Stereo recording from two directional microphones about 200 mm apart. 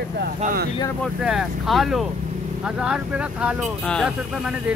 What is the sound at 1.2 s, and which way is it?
Speech, centre (ahead or behind).